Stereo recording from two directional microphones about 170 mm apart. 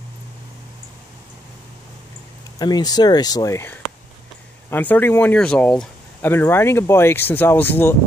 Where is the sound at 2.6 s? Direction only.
25° left (ahead or behind).